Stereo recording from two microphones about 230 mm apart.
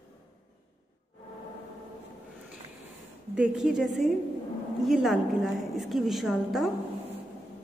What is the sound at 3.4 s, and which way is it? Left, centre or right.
A woman's voice, centre.